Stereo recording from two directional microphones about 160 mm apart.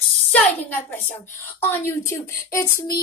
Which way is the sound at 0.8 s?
10° left (ahead or behind).